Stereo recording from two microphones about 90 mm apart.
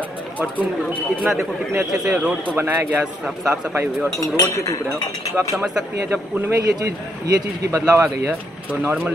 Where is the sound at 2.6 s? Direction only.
25° right (ahead or behind).